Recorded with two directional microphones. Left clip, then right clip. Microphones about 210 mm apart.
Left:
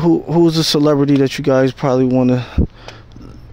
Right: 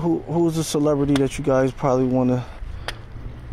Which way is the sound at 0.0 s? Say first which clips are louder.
Left 8 dB; 40° left (ahead or behind).